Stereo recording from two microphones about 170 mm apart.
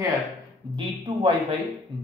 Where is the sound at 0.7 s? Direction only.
30° right (ahead or behind).